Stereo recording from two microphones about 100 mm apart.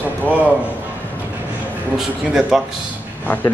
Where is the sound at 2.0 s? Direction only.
5° right (ahead or behind).